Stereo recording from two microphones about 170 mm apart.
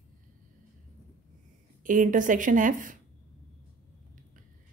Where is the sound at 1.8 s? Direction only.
50° right (ahead or behind).